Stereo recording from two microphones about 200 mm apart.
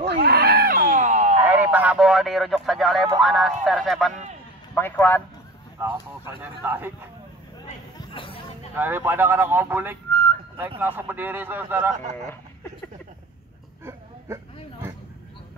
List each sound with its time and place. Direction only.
0.0 s a sound: 55° right (ahead or behind); by 1.4 s 35° right (ahead or behind)
1.4 s speech: 10° right (ahead or behind)
4.7 s speech: 10° left (ahead or behind)
5.8 s speech: 10° right (ahead or behind)
8.0 s chatter: 25° left (ahead or behind)
8.7 s speech: 10° right (ahead or behind)
13.8 s a sound: 15° right (ahead or behind)